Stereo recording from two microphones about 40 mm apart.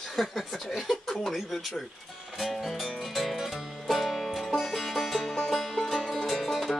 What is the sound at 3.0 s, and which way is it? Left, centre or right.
Music, centre.